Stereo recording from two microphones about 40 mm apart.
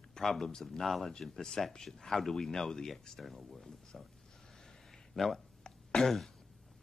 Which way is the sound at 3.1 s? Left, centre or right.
Centre.